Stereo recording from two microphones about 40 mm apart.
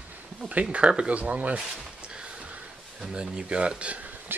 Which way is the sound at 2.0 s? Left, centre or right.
Right.